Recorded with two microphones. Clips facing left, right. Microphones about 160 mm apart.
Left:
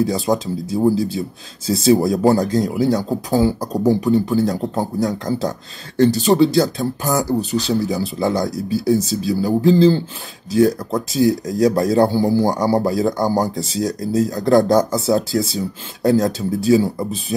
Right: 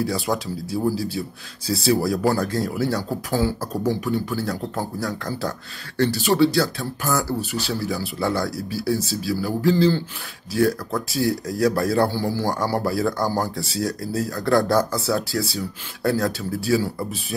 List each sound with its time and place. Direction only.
0.0 s speech: 20° left (ahead or behind)